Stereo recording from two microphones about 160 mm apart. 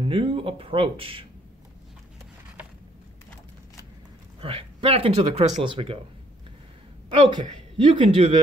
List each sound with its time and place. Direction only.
0.0 s a woman's voice: 35° right (ahead or behind)
4.4 s a woman's voice: 35° right (ahead or behind)
7.1 s a woman's voice: 30° right (ahead or behind)